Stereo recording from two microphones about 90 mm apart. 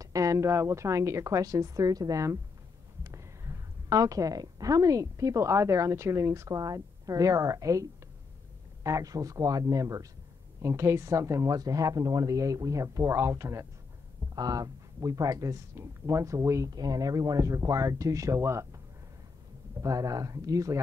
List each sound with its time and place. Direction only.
0.0 s a woman's voice: 40° right (ahead or behind)
14.3 s speech: 45° right (ahead or behind)
19.8 s speech: 40° right (ahead or behind)